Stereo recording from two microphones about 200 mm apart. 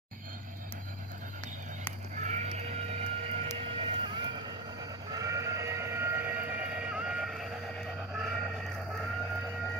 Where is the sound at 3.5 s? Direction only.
25° right (ahead or behind).